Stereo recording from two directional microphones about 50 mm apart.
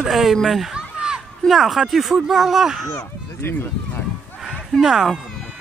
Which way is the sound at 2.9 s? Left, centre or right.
Left.